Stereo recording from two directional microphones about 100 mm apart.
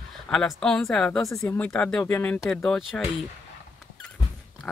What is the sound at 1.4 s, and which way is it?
Speech, 15° left (ahead or behind).